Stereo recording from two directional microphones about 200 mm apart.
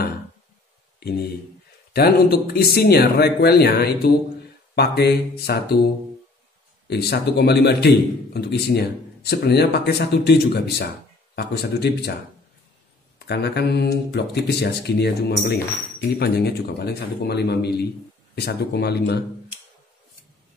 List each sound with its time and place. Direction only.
2.0 s speech: 50° left (ahead or behind)
6.9 s a man's voice: 55° left (ahead or behind)
13.3 s a man's voice: 55° left (ahead or behind)